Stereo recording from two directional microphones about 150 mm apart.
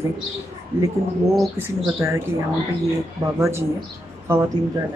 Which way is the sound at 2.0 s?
15° right (ahead or behind).